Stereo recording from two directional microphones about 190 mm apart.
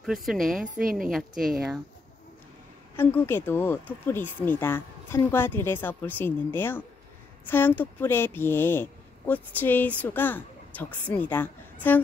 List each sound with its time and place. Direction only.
0.0 s a woman's voice: centre (ahead or behind)
0.8 s a woman's voice: 45° right (ahead or behind)
1.1 s a woman's voice: centre (ahead or behind)
3.0 s speech: 10° left (ahead or behind)